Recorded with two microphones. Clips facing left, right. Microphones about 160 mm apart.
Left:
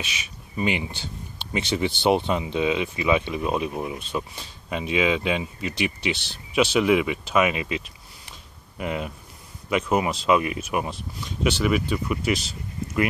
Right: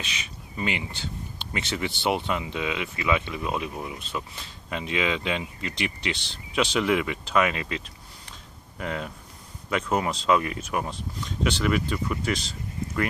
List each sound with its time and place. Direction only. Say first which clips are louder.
0.6 s speech: left 4 dB; 20° left (ahead or behind)
8.3 s a sound: even; 15° left (ahead or behind)
9.7 s speech: left 3 dB; 10° left (ahead or behind)